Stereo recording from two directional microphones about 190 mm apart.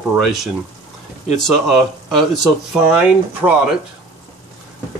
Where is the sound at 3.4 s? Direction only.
10° right (ahead or behind).